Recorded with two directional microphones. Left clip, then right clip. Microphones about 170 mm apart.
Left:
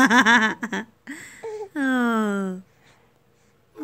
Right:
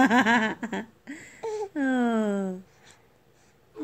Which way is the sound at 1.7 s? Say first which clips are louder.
Left 5 dB; 40° left (ahead or behind).